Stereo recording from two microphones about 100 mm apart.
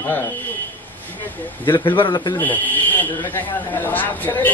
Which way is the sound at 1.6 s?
55° left (ahead or behind).